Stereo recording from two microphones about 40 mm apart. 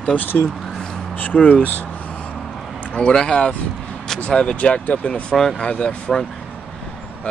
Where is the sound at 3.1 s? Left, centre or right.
Left.